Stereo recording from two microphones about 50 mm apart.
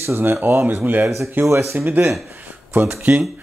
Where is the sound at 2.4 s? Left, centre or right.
Right.